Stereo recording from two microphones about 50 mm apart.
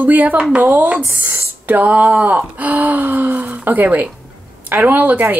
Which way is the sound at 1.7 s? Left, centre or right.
Right.